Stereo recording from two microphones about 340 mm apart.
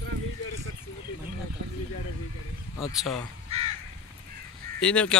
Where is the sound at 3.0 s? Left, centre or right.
Centre.